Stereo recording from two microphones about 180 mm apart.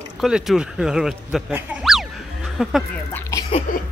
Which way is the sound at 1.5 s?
5° right (ahead or behind).